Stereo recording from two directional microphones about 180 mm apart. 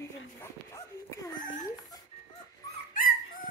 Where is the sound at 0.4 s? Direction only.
15° left (ahead or behind).